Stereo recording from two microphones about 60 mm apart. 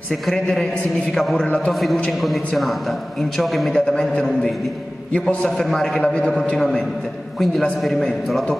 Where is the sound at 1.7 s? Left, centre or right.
Centre.